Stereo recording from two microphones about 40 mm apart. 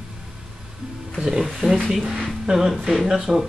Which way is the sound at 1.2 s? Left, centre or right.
Centre.